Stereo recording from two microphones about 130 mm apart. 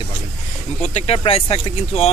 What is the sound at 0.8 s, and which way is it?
Speech, 50° left (ahead or behind).